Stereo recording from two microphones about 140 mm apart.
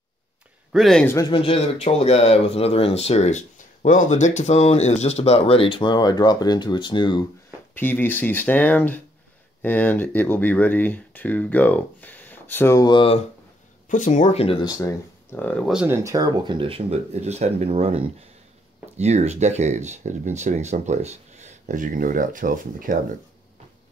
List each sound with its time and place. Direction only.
0.7 s speech: centre (ahead or behind)
1.0 s speech: 20° left (ahead or behind)
1.3 s speech: 40° left (ahead or behind)
7.7 s speech: 15° left (ahead or behind)
12.8 s speech: 40° left (ahead or behind)
13.8 s speech: 60° left (ahead or behind); by 14.6 s 45° left (ahead or behind)
14.6 s speech: 25° left (ahead or behind)
15.3 s speech: 10° left (ahead or behind)
15.6 s speech: 5° right (ahead or behind)
15.9 s speech: 20° right (ahead or behind)
16.4 s speech: 40° right (ahead or behind); by 22.9 s 80° right